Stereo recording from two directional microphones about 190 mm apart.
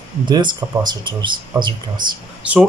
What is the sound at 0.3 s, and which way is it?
Speech, 25° right (ahead or behind).